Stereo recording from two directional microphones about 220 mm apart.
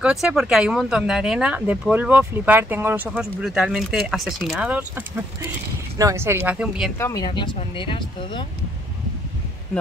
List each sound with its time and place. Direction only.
0.0 s speech: 5° right (ahead or behind)
7.0 s speech: 15° left (ahead or behind)